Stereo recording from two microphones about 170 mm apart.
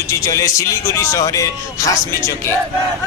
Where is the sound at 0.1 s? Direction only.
20° left (ahead or behind).